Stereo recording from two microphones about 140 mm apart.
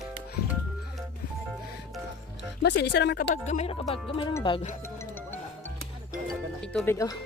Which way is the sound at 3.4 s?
50° left (ahead or behind).